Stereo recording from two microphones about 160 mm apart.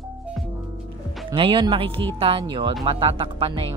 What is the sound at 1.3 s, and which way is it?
Speech, 35° right (ahead or behind).